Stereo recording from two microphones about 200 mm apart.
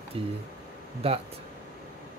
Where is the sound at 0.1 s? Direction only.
30° right (ahead or behind).